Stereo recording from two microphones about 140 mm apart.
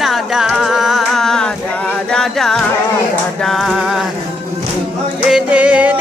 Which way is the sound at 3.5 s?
Centre (ahead or behind).